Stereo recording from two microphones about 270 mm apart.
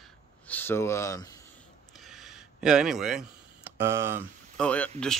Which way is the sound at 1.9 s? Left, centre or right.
Centre.